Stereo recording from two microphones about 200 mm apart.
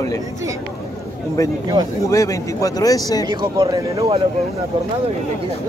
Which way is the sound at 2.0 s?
15° left (ahead or behind).